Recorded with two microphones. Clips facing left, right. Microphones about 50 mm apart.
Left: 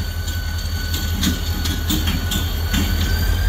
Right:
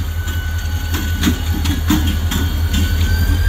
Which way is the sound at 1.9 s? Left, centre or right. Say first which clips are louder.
Right 6 dB; right.